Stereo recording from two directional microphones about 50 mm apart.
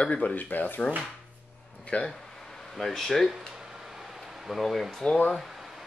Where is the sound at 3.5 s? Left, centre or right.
Centre.